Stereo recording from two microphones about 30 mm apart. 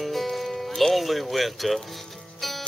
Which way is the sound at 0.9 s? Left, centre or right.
Centre.